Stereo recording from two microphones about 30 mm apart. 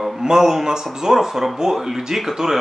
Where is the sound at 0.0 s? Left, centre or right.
Centre.